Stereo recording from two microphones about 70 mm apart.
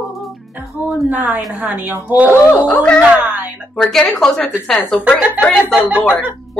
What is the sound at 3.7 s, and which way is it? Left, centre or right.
Speech, centre.